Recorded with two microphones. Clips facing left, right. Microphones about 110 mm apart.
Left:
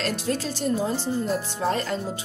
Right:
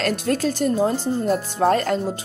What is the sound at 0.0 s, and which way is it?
Speech, 50° right (ahead or behind).